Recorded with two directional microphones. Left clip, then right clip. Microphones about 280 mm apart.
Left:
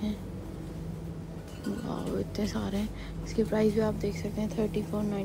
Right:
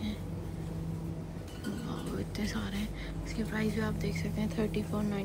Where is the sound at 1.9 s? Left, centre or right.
Centre.